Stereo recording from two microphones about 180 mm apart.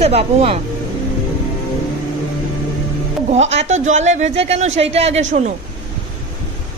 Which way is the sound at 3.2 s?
40° right (ahead or behind).